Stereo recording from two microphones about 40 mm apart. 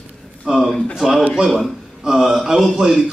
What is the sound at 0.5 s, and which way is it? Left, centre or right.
Speech, centre.